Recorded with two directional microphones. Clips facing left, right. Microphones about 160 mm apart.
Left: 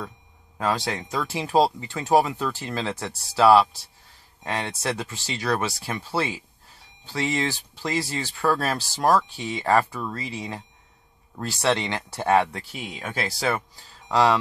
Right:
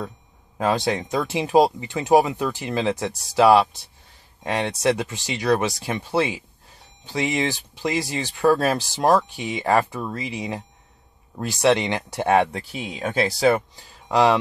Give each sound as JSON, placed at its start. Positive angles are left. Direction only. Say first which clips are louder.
{"t": 0.6, "sound": "speech", "louder": "right 4 dB", "side_deg": -20}